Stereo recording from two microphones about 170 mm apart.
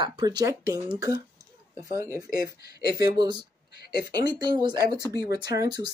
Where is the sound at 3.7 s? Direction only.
70° left (ahead or behind).